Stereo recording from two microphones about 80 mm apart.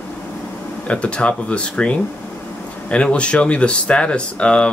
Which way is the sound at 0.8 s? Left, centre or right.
Centre.